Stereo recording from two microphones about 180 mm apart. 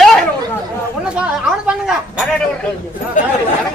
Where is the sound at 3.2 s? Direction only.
45° left (ahead or behind).